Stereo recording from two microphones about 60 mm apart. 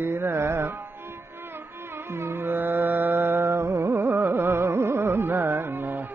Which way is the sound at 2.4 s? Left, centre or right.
Right.